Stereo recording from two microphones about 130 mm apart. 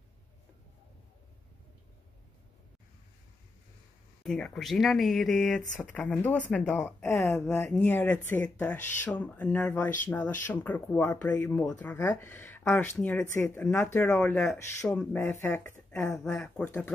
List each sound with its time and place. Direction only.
4.2 s speech: 5° left (ahead or behind)